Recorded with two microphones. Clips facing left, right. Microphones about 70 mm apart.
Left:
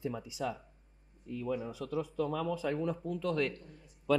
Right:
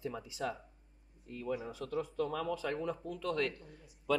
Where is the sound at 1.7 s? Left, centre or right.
Right.